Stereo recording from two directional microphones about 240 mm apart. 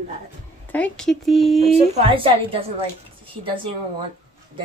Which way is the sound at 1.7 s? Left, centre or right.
Right.